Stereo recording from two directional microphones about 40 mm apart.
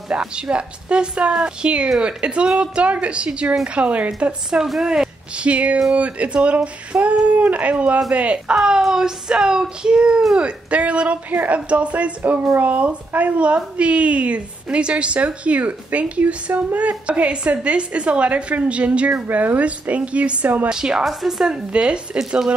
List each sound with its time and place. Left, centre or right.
0.1 s a woman's voice: right
4.5 s a woman's voice: right
5.4 s a woman's voice: right
8.8 s a woman's voice: centre; by 20.5 s right
20.6 s a woman's voice: centre
21.0 s a woman's voice: centre
21.5 s a woman's voice: right